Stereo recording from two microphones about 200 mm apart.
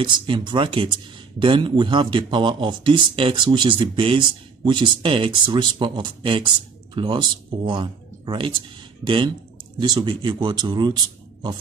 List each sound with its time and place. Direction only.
0.0 s speech: 25° right (ahead or behind)